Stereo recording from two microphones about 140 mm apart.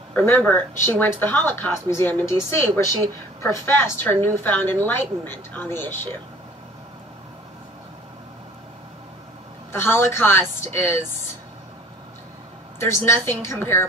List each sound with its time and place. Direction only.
0.1 s speech: 15° left (ahead or behind)
9.7 s speech: 15° left (ahead or behind)
12.7 s speech: 20° left (ahead or behind)